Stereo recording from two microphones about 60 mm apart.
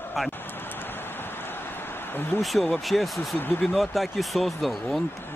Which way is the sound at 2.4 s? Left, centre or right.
Centre.